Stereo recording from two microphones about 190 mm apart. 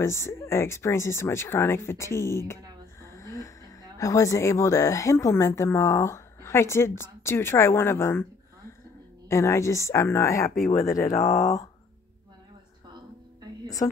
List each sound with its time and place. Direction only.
0.0 s a woman's voice: 15° left (ahead or behind)
9.3 s a woman's voice: 15° left (ahead or behind)
10.6 s speech: 40° left (ahead or behind)
10.9 s a woman's voice: 15° left (ahead or behind)
11.1 s speech: 40° left (ahead or behind)